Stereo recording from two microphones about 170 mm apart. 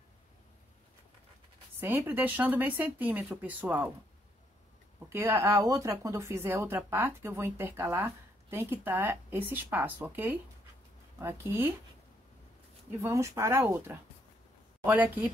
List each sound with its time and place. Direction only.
1.8 s speech: 15° right (ahead or behind)
5.1 s speech: 15° right (ahead or behind)
13.0 s speech: 15° right (ahead or behind)